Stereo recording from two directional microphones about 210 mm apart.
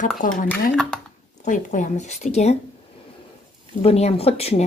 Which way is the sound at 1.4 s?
35° left (ahead or behind).